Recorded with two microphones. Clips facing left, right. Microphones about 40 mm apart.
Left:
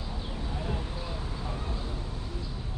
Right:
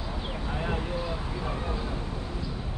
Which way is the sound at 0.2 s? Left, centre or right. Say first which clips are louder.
Right 5 dB; right.